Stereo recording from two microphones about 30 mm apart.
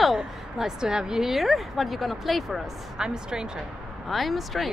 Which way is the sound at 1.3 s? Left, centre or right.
Centre.